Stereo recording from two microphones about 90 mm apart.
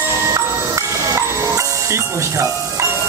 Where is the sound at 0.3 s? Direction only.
35° right (ahead or behind).